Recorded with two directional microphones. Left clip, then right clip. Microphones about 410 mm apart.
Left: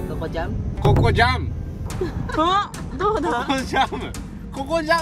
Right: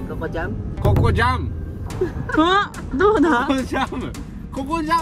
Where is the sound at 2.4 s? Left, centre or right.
Right.